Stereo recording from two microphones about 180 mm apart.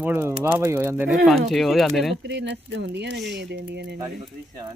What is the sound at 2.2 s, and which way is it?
Speech, 75° right (ahead or behind).